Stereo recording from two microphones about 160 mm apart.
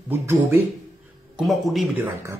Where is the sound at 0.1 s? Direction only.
15° right (ahead or behind).